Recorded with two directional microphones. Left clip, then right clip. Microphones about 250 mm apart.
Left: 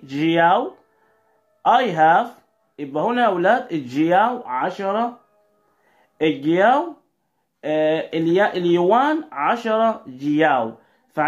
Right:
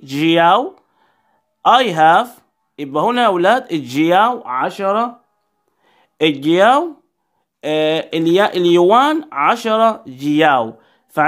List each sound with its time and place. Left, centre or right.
0.0 s speech: right
6.1 s speech: right